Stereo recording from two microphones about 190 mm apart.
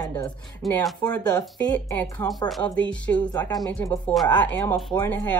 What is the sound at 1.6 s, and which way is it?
Speech, 10° left (ahead or behind).